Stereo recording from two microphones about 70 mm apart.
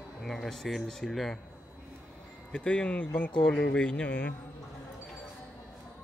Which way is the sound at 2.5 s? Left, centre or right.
Centre.